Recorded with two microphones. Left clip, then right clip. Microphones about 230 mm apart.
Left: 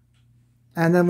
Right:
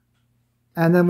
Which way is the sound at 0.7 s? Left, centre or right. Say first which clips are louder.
Right 1 dB; centre.